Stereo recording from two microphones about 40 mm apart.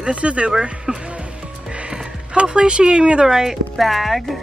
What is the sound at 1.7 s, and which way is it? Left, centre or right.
Music, right.